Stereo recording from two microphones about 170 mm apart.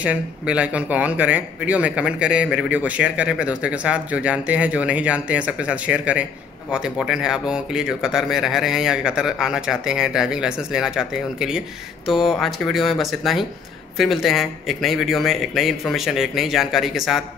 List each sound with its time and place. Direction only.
0.0 s speech: 5° right (ahead or behind)